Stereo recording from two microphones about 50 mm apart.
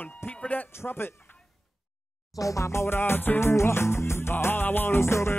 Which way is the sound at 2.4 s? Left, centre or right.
Left.